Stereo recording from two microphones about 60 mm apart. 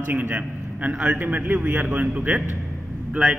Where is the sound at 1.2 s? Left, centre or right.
Right.